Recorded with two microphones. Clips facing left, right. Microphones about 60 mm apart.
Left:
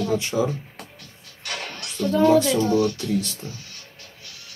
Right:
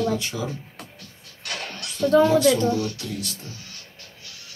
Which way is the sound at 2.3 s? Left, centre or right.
Left.